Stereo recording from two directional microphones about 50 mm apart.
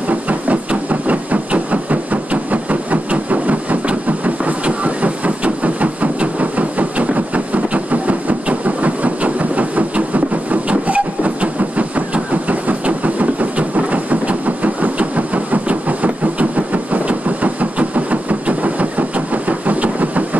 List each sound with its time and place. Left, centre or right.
0.1 s train: right